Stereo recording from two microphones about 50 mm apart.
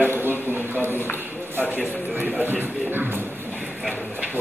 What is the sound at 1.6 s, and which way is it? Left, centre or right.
Speech, left.